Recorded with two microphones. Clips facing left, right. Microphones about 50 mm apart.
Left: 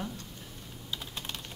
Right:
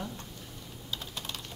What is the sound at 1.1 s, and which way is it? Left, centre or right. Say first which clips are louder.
Computer keyboard: even; left.